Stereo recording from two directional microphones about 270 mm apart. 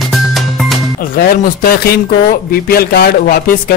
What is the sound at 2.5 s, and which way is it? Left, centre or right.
Speech, left.